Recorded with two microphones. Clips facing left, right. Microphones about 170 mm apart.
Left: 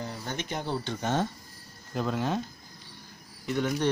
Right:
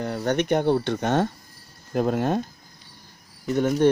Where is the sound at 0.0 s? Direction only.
65° right (ahead or behind).